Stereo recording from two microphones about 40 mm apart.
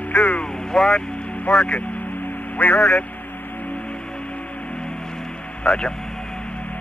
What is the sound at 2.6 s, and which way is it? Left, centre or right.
Speech, left.